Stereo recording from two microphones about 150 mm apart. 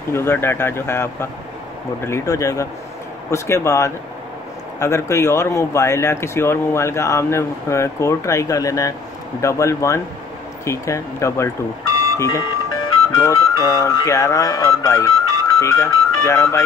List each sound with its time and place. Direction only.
0.1 s a man's voice: 15° left (ahead or behind)